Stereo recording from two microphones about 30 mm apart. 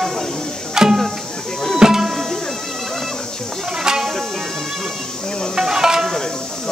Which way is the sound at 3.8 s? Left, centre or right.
Right.